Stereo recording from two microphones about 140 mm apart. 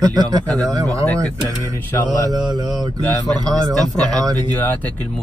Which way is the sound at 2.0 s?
30° right (ahead or behind).